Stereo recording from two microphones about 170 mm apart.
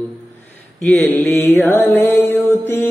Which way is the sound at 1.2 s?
15° left (ahead or behind).